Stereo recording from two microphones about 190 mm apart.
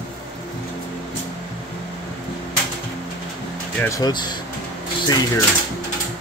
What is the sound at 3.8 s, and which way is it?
Speech, 20° left (ahead or behind).